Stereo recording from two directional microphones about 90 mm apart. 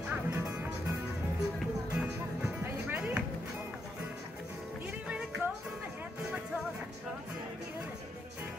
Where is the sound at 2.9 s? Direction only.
15° right (ahead or behind).